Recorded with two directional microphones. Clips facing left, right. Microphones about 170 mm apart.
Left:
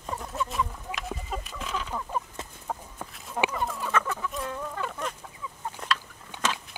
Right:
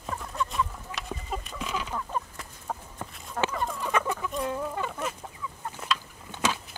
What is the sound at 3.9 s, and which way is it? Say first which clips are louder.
Chicken: right 3 dB; 15° right (ahead or behind).